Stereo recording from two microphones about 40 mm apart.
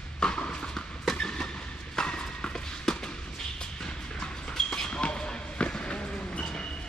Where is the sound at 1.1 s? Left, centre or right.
Centre.